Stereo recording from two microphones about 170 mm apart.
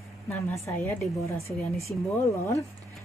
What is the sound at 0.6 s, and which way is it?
Speech, 10° left (ahead or behind).